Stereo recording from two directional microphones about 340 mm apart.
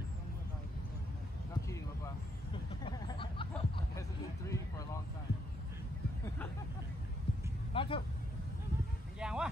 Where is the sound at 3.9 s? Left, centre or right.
Centre.